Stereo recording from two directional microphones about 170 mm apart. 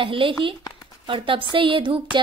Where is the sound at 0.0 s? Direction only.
30° right (ahead or behind).